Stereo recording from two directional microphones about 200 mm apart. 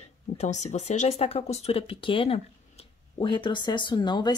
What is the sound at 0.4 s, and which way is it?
Speech, 35° left (ahead or behind).